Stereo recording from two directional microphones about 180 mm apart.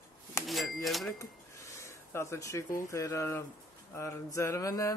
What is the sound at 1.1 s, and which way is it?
Speech, 15° left (ahead or behind).